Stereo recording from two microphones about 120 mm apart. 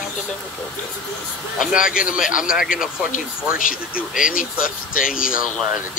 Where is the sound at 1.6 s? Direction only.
5° right (ahead or behind).